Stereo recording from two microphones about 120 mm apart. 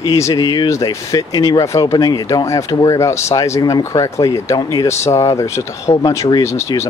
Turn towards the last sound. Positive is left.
turn(degrees=25)  # may be behind; listen again after turning